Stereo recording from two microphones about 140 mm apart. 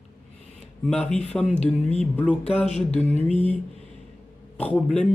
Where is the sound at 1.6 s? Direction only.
50° left (ahead or behind).